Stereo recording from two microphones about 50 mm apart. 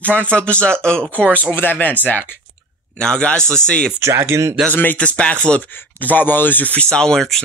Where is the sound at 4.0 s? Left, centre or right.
Right.